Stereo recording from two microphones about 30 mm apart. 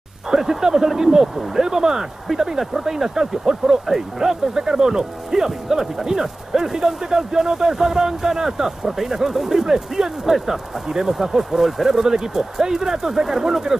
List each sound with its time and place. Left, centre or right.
0.3 s speech: centre